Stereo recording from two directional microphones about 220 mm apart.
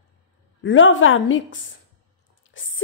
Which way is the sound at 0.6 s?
60° left (ahead or behind).